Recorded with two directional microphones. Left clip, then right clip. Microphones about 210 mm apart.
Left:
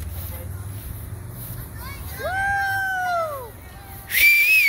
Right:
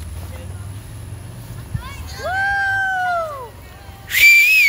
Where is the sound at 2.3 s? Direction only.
35° left (ahead or behind).